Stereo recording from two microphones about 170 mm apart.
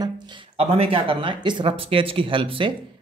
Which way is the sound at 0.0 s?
30° right (ahead or behind).